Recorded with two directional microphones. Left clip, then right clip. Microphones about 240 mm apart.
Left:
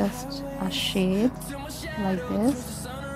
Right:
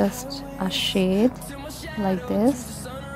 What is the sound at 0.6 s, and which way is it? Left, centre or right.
Music, centre.